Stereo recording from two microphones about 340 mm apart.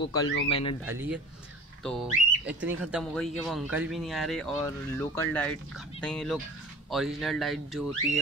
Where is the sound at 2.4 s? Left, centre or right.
Centre.